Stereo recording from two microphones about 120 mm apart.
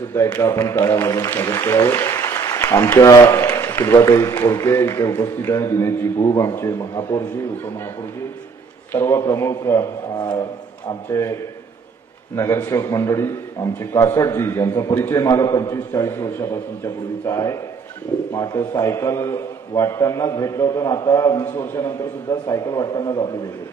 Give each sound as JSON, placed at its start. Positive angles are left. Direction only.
{"t": 0.3, "sound": "a man's voice", "side_deg": 30}
{"t": 8.9, "sound": "a man's voice", "side_deg": 25}
{"t": 10.9, "sound": "a man's voice", "side_deg": 25}
{"t": 12.4, "sound": "a man's voice", "side_deg": 25}